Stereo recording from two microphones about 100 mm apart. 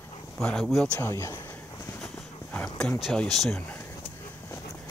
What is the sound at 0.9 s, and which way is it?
Speech, 25° left (ahead or behind).